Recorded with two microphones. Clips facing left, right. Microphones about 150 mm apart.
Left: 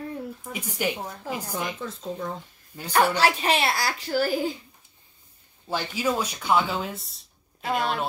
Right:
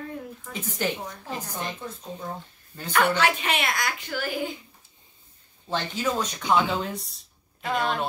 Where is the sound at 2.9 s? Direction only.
35° left (ahead or behind).